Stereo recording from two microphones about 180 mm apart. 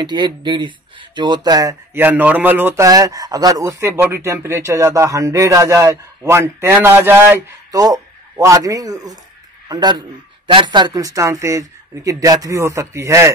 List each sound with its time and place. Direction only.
0.0 s a man's voice: 25° right (ahead or behind)